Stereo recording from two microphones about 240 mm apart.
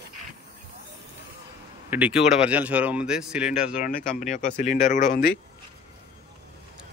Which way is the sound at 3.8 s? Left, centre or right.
Left.